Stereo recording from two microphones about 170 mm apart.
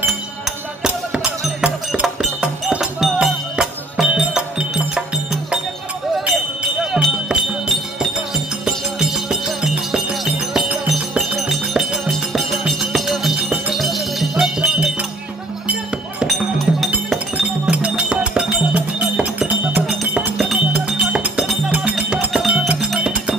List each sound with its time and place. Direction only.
0.0 s music: 5° right (ahead or behind)
6.9 s music: 5° right (ahead or behind)